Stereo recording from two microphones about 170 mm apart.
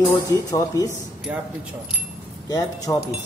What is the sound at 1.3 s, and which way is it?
Speech, 10° right (ahead or behind).